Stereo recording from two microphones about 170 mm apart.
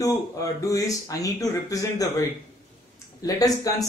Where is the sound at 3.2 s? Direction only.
20° left (ahead or behind).